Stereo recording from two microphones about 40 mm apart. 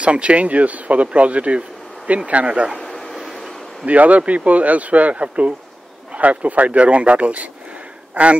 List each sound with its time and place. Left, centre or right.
0.0 s speech: right
2.8 s a sound: centre
3.8 s a man's voice: right